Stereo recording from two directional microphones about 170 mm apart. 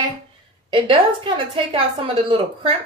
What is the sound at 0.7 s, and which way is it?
Speech, 30° right (ahead or behind).